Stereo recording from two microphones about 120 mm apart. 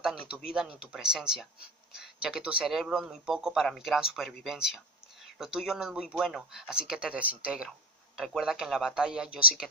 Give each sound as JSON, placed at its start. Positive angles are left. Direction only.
{"t": 0.3, "sound": "a man's voice", "side_deg": -10}